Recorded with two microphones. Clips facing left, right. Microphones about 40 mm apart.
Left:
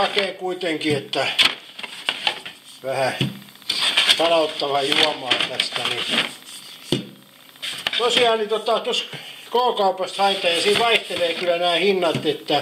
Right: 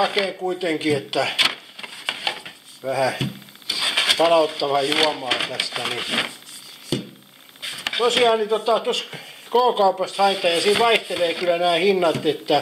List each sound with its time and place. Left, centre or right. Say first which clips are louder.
0.5 s speech: right 1 dB; centre
1.3 s a sound: left 2 dB; centre
2.8 s speech: even; centre
3.2 s speech: left 2 dB; centre
7.6 s speech: even; centre